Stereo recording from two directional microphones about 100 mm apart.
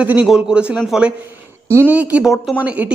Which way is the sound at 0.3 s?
10° right (ahead or behind).